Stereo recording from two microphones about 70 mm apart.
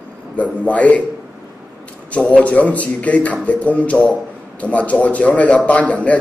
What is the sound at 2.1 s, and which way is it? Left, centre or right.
A man's voice, centre.